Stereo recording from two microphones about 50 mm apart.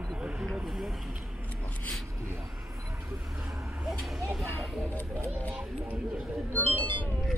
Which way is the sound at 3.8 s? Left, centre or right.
Centre.